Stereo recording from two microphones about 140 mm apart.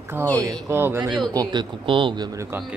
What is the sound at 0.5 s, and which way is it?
Speech, 20° right (ahead or behind).